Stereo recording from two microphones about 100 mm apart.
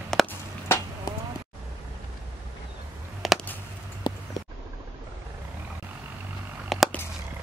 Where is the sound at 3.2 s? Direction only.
Centre (ahead or behind).